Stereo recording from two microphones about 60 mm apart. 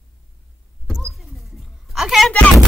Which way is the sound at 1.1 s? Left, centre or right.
Centre.